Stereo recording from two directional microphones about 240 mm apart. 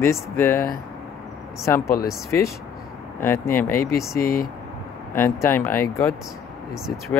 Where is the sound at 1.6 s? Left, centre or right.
Centre.